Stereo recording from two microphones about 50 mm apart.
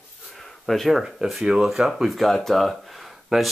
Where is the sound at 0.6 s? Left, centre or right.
Centre.